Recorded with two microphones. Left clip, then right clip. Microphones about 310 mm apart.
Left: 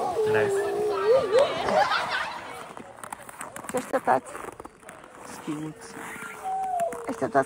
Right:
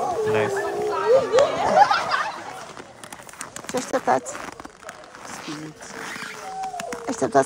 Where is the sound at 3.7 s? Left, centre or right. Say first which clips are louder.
Right 2 dB; centre.